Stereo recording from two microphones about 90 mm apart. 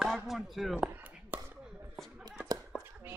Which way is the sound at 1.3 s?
25° right (ahead or behind).